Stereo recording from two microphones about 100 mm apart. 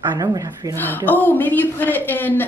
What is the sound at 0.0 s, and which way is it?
Speech, 45° right (ahead or behind).